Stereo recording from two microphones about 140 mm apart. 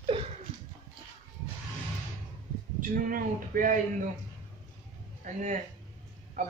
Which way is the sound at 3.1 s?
75° right (ahead or behind).